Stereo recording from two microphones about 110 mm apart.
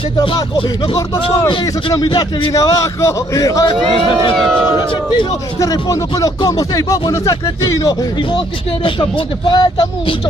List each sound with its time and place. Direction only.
0.2 s a man's voice: 50° left (ahead or behind)
2.5 s a man's voice: 30° left (ahead or behind)
3.6 s a man's voice: 50° left (ahead or behind)
5.6 s speech: 30° left (ahead or behind)
9.5 s a man's voice: 45° left (ahead or behind)